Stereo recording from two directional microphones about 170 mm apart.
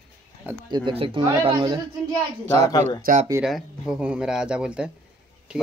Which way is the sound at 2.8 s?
45° right (ahead or behind).